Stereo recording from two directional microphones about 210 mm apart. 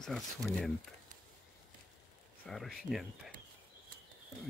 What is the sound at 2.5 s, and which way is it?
Speech, centre (ahead or behind).